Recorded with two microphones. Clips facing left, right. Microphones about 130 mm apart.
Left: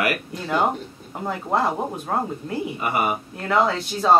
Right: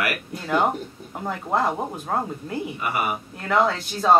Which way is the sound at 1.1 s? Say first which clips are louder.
Left 1 dB; 5° left (ahead or behind).